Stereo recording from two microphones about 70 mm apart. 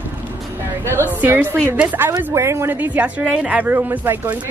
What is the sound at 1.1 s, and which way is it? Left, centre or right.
A woman's voice, right.